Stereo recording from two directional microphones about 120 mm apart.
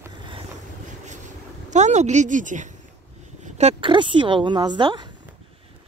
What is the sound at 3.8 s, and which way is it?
Speech, 45° right (ahead or behind).